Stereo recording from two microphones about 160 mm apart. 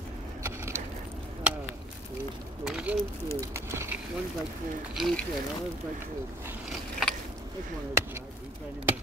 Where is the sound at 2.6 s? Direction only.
5° right (ahead or behind).